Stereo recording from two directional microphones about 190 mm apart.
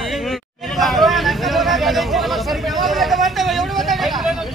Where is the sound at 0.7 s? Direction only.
Centre (ahead or behind).